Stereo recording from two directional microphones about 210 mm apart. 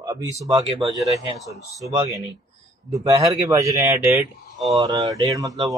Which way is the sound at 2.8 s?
15° right (ahead or behind).